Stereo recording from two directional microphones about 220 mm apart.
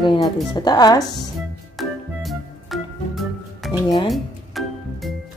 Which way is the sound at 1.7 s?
Centre (ahead or behind).